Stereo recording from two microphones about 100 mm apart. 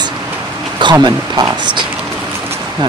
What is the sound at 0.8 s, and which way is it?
Speech, 50° right (ahead or behind).